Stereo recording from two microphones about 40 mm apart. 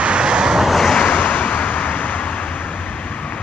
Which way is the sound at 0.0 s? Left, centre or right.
Right.